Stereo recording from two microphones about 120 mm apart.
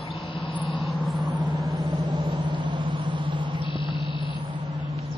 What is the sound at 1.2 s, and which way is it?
Vehicle, 40° right (ahead or behind).